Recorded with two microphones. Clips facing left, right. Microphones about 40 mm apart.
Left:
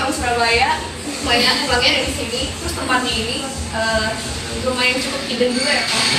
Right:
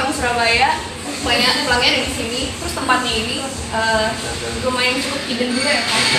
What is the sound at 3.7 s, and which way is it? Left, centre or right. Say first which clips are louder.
Speech: right 2 dB; centre.